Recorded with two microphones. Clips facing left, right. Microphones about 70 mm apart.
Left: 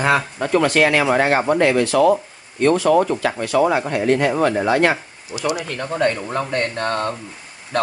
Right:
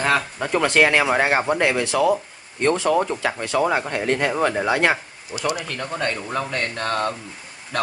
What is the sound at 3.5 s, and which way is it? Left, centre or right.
Speech, centre.